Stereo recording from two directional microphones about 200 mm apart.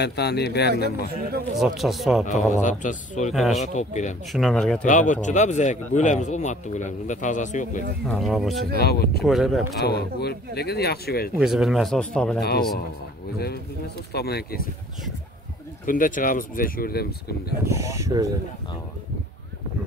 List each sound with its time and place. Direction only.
0.0 s speech: 55° left (ahead or behind)
1.6 s speech: centre (ahead or behind)
2.2 s speech: 40° left (ahead or behind)
4.3 s speech: centre (ahead or behind)
4.8 s speech: 40° left (ahead or behind)
8.0 s speech: centre (ahead or behind)
8.7 s speech: 50° left (ahead or behind)
9.2 s speech: centre (ahead or behind)
9.8 s speech: 55° left (ahead or behind)
11.3 s speech: centre (ahead or behind)
12.4 s speech: 50° left (ahead or behind)
14.1 s speech: 50° left (ahead or behind)
15.8 s speech: 40° left (ahead or behind)
17.6 s speech: 15° right (ahead or behind)